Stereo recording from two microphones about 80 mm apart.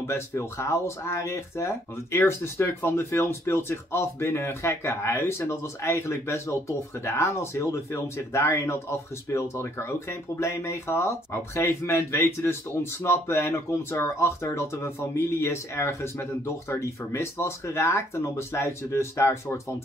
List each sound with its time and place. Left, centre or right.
0.0 s speech: left